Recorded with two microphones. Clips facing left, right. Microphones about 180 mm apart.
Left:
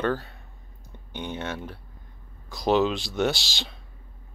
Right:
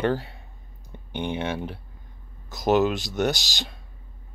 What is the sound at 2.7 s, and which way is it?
Speech, centre (ahead or behind).